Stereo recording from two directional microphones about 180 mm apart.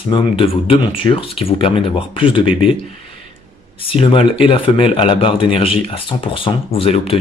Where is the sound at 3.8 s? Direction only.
30° left (ahead or behind).